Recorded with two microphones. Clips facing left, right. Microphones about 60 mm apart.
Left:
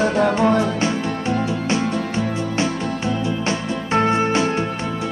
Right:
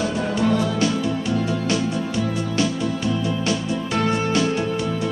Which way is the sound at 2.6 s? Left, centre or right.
Left.